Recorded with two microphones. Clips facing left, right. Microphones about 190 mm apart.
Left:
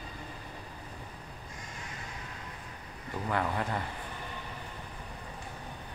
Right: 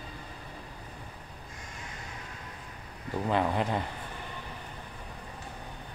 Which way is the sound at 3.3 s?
20° right (ahead or behind).